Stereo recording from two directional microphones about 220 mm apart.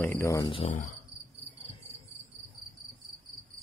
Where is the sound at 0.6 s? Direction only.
35° left (ahead or behind).